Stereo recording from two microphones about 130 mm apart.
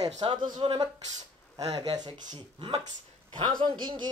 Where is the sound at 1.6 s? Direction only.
30° right (ahead or behind).